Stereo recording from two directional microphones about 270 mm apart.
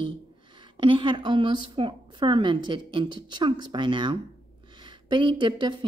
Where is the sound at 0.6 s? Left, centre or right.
Centre.